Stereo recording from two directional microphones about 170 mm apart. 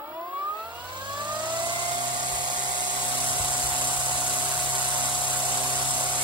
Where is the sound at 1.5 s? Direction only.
25° right (ahead or behind).